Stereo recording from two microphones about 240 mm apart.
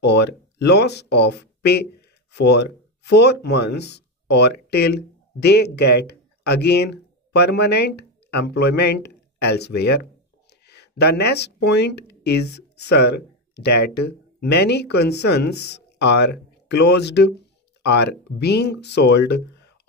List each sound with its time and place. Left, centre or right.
0.0 s speech: left